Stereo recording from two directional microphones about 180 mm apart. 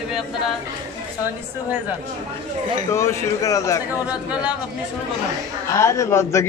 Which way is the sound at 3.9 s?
5° right (ahead or behind).